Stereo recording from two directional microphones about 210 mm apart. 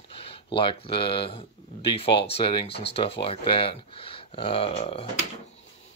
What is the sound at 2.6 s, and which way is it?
Speech, 55° left (ahead or behind).